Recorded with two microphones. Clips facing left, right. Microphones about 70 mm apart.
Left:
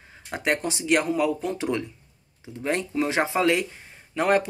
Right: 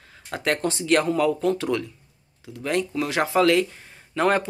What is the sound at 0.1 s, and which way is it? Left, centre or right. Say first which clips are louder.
Speech: even; centre.